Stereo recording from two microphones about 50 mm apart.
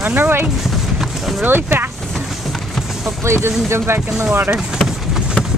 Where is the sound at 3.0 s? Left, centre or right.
Right.